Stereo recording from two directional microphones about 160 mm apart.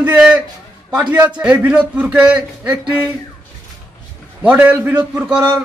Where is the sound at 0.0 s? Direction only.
10° right (ahead or behind).